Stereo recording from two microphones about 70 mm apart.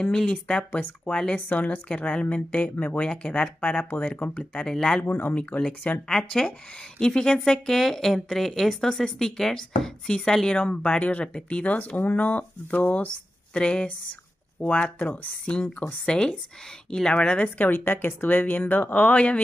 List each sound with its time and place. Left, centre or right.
0.0 s a woman's voice: centre
5.0 s speech: left
5.3 s a woman's voice: centre